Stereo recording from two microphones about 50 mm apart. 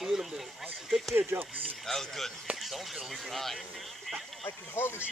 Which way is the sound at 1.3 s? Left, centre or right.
Right.